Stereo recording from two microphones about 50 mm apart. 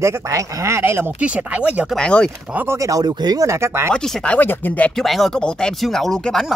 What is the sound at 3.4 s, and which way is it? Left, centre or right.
Speech, right.